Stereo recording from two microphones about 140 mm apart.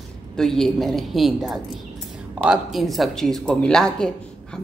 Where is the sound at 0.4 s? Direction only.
5° left (ahead or behind).